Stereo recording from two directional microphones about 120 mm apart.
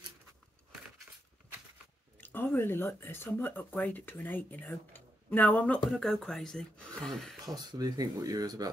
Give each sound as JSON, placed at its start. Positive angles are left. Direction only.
{"t": 2.1, "sound": "speech", "side_deg": 15}
{"t": 7.5, "sound": "speech", "side_deg": -35}